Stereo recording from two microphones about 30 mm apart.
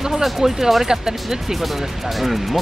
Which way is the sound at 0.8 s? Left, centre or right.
Right.